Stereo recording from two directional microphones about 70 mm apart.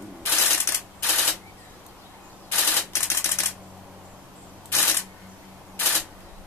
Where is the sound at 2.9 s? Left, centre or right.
Left.